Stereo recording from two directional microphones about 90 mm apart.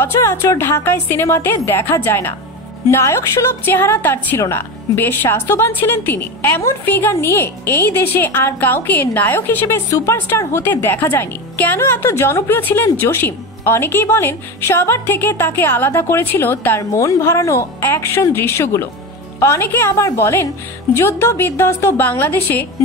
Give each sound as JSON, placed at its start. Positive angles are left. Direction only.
{"t": 0.0, "sound": "a woman's voice", "side_deg": 30}
{"t": 9.8, "sound": "a woman's voice", "side_deg": 35}